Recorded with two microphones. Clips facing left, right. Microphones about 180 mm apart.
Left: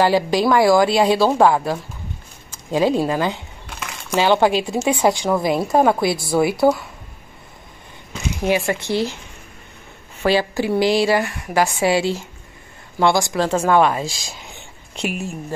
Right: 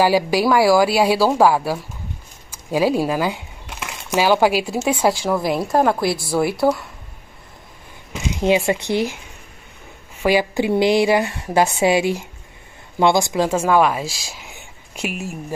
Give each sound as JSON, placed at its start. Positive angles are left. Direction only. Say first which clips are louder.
{"t": 0.0, "sound": "speech", "louder": "even", "side_deg": -10}
{"t": 8.1, "sound": "speech", "louder": "right 2 dB", "side_deg": -20}
{"t": 10.2, "sound": "a woman's voice", "louder": "right 1 dB", "side_deg": -15}